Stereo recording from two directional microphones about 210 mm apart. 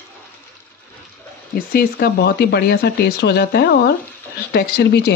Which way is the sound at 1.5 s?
45° left (ahead or behind).